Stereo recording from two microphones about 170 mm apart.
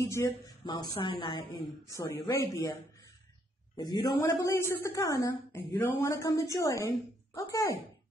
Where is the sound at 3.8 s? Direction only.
25° left (ahead or behind).